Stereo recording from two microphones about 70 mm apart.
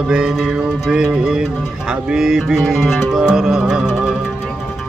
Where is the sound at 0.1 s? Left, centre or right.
Centre.